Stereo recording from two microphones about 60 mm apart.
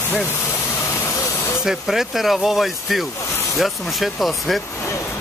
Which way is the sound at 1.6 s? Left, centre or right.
Centre.